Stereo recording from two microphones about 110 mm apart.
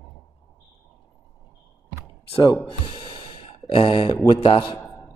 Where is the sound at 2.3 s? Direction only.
40° left (ahead or behind).